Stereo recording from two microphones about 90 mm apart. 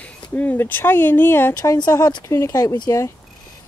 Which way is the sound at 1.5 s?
45° left (ahead or behind).